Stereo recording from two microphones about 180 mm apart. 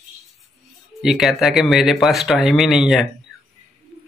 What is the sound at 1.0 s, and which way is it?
Speech, centre (ahead or behind).